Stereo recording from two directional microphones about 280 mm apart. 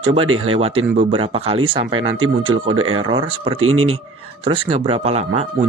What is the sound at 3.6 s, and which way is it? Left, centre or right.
Speech, right.